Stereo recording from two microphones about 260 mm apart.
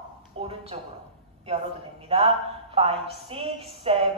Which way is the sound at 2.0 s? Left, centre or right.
Right.